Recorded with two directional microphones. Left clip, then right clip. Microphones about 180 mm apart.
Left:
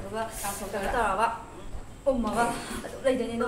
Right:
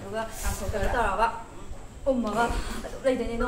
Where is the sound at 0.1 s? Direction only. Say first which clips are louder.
Even; centre (ahead or behind).